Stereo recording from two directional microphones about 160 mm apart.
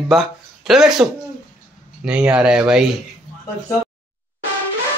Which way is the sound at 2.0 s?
5° right (ahead or behind).